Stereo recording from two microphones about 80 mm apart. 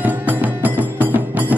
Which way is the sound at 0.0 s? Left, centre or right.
Right.